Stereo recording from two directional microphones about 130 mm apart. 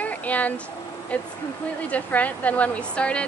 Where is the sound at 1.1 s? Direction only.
10° left (ahead or behind).